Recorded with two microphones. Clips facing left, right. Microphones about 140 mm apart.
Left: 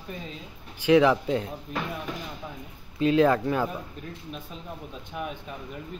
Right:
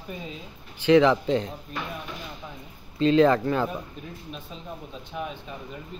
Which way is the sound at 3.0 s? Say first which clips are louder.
Right 2 dB; 5° left (ahead or behind).